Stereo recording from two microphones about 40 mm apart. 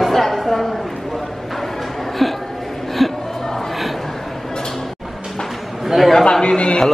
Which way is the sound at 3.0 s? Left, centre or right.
Centre.